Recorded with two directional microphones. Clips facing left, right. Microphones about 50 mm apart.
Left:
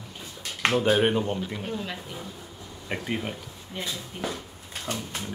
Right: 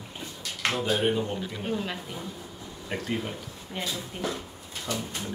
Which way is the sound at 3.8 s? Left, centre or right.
Centre.